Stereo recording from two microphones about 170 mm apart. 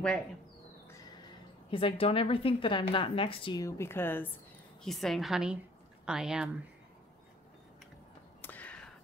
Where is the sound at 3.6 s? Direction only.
15° left (ahead or behind).